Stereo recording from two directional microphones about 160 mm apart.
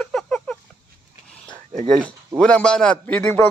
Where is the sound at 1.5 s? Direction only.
50° right (ahead or behind).